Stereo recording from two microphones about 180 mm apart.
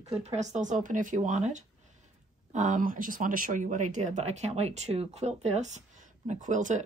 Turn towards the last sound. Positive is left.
turn(degrees=-45)  # may be behind; listen again after turning